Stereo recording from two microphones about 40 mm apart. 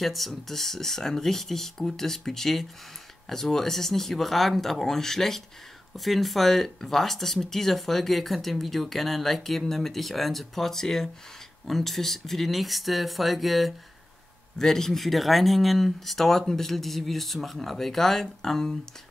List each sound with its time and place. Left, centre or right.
0.0 s speech: centre
14.6 s speech: centre